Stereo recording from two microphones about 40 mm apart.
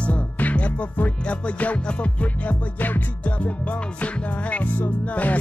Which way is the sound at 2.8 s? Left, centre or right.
Left.